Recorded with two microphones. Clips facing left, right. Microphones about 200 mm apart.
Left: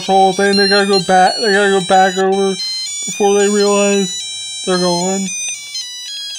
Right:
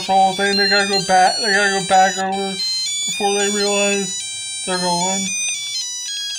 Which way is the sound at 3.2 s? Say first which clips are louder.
Left 8 dB; 50° left (ahead or behind).